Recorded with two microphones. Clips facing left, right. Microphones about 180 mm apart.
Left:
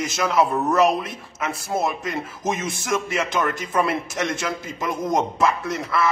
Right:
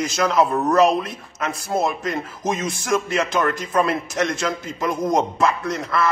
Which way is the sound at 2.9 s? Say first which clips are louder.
Right 3 dB; centre (ahead or behind).